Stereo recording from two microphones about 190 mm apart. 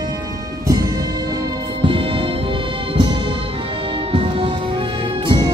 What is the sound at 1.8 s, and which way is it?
Music, 25° right (ahead or behind).